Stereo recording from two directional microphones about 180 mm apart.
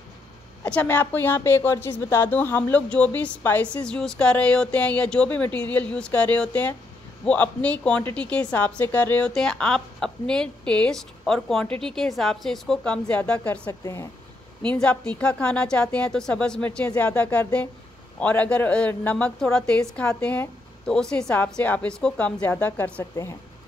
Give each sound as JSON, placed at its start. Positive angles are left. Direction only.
{"t": 0.7, "sound": "a woman's voice", "side_deg": 10}
{"t": 13.7, "sound": "speech", "side_deg": 20}
{"t": 14.6, "sound": "a woman's voice", "side_deg": 5}